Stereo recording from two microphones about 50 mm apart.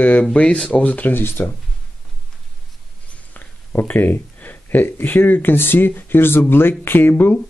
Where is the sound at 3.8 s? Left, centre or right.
Left.